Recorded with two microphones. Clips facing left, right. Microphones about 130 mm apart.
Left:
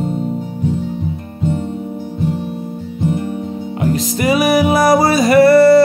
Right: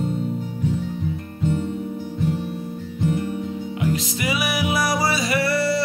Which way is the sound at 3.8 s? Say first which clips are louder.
Left 8 dB; 45° left (ahead or behind).